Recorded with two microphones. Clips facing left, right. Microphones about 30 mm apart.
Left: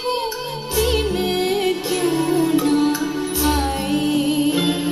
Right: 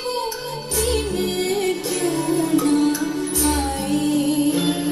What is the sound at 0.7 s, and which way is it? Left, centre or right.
Music, centre.